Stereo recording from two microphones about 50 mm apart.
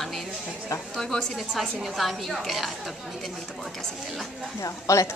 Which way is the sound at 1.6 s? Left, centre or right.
Centre.